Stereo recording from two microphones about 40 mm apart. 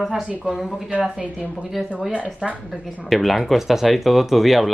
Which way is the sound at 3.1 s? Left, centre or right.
Centre.